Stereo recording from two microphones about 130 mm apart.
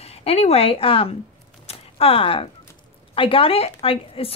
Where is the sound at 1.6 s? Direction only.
45° left (ahead or behind).